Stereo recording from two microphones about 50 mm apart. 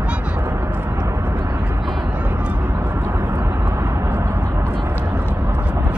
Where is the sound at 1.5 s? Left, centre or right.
Right.